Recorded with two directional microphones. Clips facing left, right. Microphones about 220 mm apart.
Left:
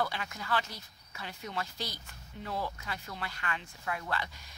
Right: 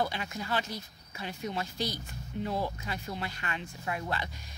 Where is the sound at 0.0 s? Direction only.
20° right (ahead or behind).